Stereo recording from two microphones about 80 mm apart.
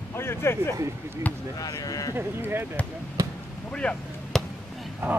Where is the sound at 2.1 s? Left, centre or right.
Right.